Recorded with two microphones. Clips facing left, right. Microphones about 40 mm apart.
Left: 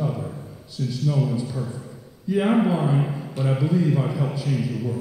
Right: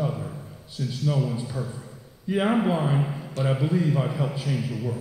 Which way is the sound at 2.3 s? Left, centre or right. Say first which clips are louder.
Left 3 dB; right.